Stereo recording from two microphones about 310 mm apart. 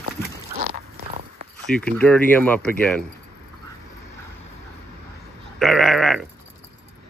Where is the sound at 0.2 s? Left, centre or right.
Centre.